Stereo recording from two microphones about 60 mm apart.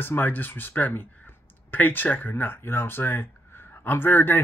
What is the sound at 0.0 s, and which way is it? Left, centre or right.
Speech, left.